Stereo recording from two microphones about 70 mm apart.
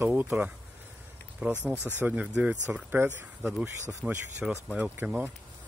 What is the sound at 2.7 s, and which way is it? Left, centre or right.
Speech, right.